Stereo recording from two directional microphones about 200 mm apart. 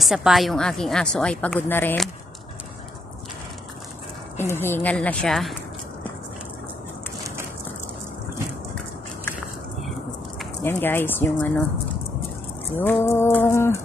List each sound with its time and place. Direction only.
0.0 s a woman's voice: centre (ahead or behind)
4.4 s a woman's voice: 10° left (ahead or behind)
10.6 s a woman's voice: 10° left (ahead or behind)
12.7 s a woman's voice: 10° left (ahead or behind)